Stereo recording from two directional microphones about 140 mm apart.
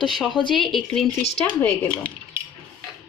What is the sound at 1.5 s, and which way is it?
Speech, 10° left (ahead or behind).